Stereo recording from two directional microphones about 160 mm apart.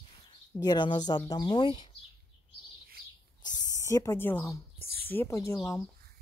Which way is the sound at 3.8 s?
15° left (ahead or behind).